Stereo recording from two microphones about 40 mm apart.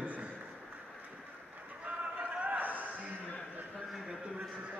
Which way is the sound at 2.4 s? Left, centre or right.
Right.